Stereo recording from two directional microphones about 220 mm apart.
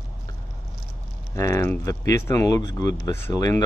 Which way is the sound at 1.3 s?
15° left (ahead or behind).